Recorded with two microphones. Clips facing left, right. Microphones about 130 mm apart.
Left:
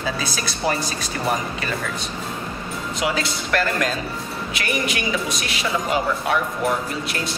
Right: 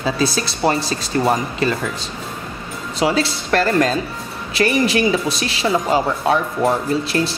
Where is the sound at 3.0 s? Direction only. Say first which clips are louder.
Right 7 dB; 30° right (ahead or behind).